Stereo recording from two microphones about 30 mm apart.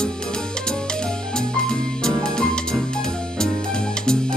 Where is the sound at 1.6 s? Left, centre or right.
Left.